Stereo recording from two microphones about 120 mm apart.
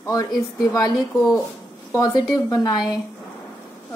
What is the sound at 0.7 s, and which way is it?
A woman's voice, 35° left (ahead or behind).